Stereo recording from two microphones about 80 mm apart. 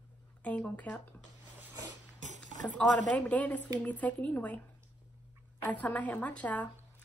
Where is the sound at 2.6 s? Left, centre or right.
Centre.